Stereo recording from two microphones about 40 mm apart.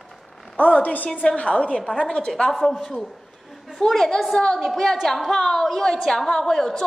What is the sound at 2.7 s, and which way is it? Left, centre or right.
A woman's voice, centre.